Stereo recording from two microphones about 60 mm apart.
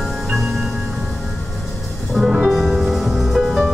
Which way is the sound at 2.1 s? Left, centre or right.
Centre.